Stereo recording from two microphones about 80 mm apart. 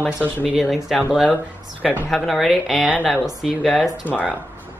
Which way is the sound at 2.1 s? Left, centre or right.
Centre.